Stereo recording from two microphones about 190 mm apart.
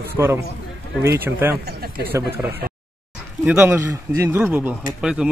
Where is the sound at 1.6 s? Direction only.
55° right (ahead or behind).